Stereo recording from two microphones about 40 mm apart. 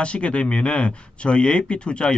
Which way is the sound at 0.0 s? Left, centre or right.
Left.